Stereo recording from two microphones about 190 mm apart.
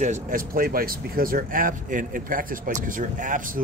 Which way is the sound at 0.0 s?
45° right (ahead or behind).